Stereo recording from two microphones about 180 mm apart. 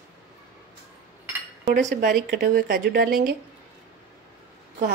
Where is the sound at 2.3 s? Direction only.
65° right (ahead or behind).